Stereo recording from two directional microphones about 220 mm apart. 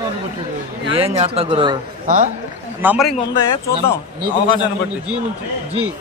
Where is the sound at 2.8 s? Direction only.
5° right (ahead or behind).